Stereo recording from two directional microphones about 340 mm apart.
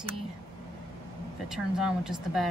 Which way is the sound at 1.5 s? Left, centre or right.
Centre.